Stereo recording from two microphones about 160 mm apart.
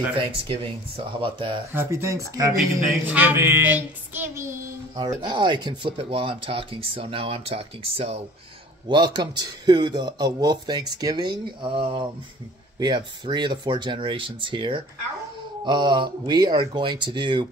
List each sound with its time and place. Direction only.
0.1 s speech: 35° right (ahead or behind)
1.7 s speech: 15° right (ahead or behind)
3.1 s child singing: 10° right (ahead or behind)
4.9 s speech: 30° right (ahead or behind)